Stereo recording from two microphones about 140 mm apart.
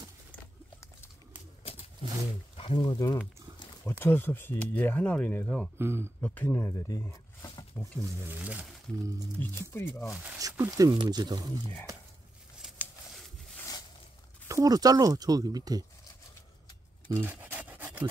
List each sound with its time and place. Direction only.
2.0 s speech: 40° right (ahead or behind)
2.5 s speech: 40° left (ahead or behind)
4.0 s speech: 15° left (ahead or behind)
5.8 s speech: 15° right (ahead or behind)
6.2 s speech: 15° left (ahead or behind)
8.0 s speech: 10° right (ahead or behind)
9.4 s speech: 15° left (ahead or behind)
9.9 s speech: 5° right (ahead or behind)
10.6 s speech: 25° right (ahead or behind)
12.6 s a sound: 5° right (ahead or behind)
14.5 s speech: 25° right (ahead or behind)
17.1 s a sound: 15° right (ahead or behind)